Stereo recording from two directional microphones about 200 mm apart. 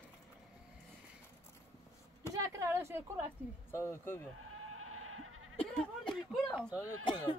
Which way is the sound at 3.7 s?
10° left (ahead or behind).